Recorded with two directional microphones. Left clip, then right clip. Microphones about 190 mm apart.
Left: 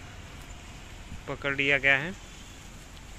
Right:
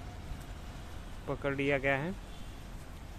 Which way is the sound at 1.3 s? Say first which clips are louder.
Left 6 dB; centre (ahead or behind).